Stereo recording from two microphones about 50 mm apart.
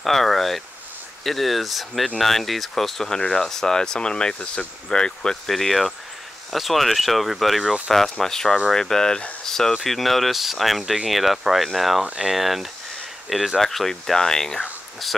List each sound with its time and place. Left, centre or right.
0.0 s speech: centre